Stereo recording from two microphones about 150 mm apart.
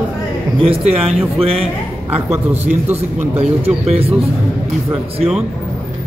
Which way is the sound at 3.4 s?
45° right (ahead or behind).